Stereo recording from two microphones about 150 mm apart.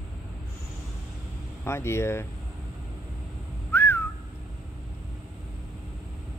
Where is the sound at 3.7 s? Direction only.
15° left (ahead or behind).